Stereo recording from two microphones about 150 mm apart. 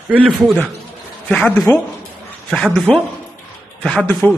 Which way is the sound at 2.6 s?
Centre (ahead or behind).